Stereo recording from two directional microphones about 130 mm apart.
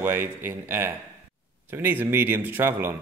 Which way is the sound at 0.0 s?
15° right (ahead or behind).